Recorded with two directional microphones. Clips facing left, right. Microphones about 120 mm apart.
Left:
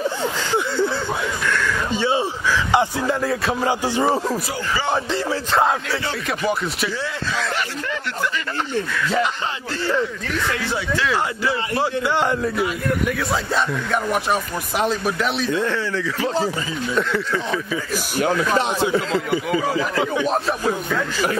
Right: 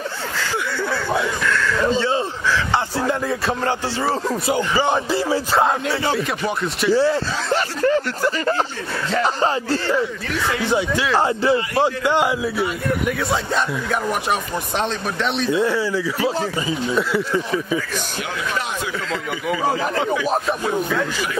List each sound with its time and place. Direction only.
0.4 s a sound: 20° left (ahead or behind)
3.1 s a man's voice: centre (ahead or behind)
3.6 s music: 15° left (ahead or behind)
4.5 s speech: 20° right (ahead or behind)
4.9 s a man's voice: 10° right (ahead or behind)
6.9 s speech: 35° right (ahead or behind)
9.8 s a man's voice: 5° right (ahead or behind)
10.6 s speech: 15° right (ahead or behind)
11.1 s speech: 30° right (ahead or behind)
12.0 s speech: 15° right (ahead or behind)
12.3 s a man's voice: 5° right (ahead or behind)
15.5 s speech: 10° right (ahead or behind)
18.2 s speech: 40° left (ahead or behind)
20.2 s a man's voice: centre (ahead or behind)